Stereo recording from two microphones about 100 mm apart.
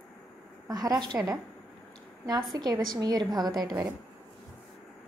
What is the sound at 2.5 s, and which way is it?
A woman's voice, 45° right (ahead or behind).